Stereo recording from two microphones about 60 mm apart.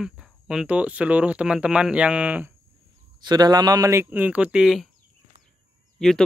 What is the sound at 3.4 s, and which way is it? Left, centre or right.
Speech, right.